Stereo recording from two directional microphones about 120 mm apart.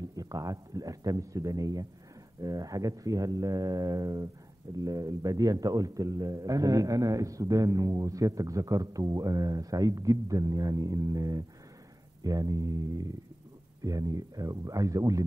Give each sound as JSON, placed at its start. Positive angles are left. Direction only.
{"t": 0.1, "sound": "a man's voice", "side_deg": -30}